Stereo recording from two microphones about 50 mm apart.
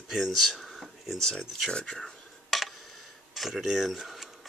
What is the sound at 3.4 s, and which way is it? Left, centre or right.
Speech, centre.